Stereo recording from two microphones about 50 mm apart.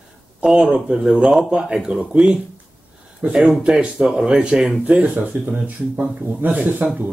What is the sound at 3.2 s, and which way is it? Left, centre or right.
Speech, right.